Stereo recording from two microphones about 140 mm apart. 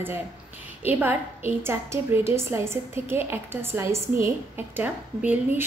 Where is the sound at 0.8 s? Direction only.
15° right (ahead or behind).